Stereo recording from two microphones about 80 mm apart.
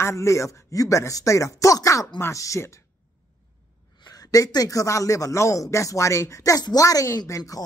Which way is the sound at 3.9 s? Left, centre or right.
Left.